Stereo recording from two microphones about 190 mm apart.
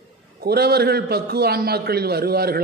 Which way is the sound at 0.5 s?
55° right (ahead or behind).